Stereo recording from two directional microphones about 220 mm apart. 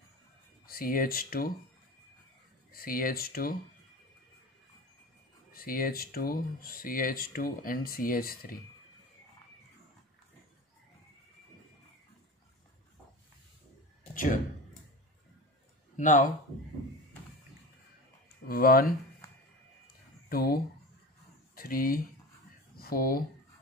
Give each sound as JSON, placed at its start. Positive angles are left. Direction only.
{"t": 0.7, "sound": "speech", "side_deg": 40}
{"t": 2.7, "sound": "speech", "side_deg": 40}
{"t": 5.5, "sound": "speech", "side_deg": 40}
{"t": 14.1, "sound": "speech", "side_deg": 35}
{"t": 16.0, "sound": "speech", "side_deg": 35}
{"t": 18.5, "sound": "speech", "side_deg": 40}
{"t": 20.2, "sound": "speech", "side_deg": 40}